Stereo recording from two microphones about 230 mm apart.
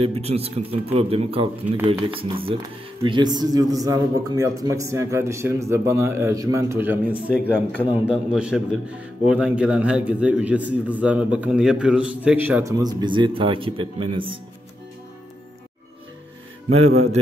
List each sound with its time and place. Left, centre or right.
0.0 s a man's voice: right